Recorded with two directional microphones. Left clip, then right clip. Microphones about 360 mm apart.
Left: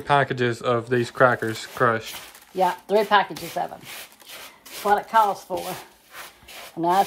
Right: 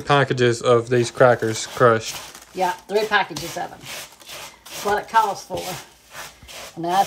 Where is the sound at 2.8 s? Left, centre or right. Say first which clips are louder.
Left 1 dB; centre.